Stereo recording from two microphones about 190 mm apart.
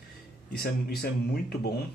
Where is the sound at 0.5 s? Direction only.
55° left (ahead or behind).